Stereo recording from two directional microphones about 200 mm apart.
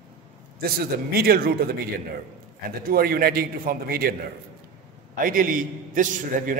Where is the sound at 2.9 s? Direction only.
50° right (ahead or behind).